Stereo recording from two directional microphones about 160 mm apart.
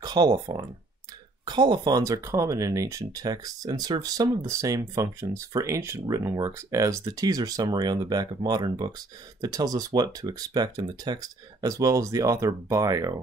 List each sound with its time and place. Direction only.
0.0 s speech: 25° right (ahead or behind)